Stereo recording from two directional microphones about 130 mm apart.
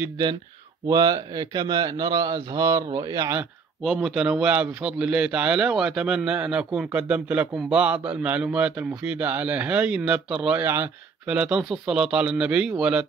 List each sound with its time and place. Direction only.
0.8 s speech: 25° right (ahead or behind)
3.8 s a man's voice: centre (ahead or behind)